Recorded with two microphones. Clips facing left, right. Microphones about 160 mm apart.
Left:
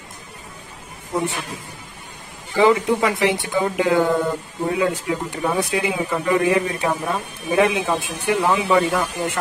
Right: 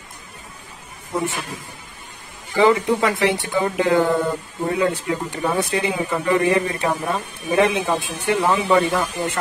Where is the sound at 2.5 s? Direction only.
10° left (ahead or behind).